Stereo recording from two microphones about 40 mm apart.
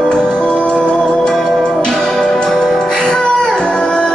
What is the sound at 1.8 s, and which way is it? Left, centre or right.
Music, centre.